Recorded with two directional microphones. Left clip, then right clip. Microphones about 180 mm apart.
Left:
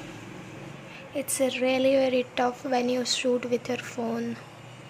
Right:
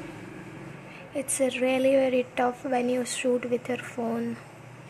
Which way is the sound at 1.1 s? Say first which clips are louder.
Even; centre (ahead or behind).